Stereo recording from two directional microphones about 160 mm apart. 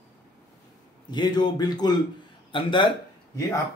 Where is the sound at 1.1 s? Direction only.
25° left (ahead or behind).